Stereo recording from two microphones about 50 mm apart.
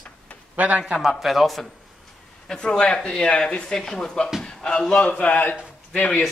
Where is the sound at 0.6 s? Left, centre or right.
Right.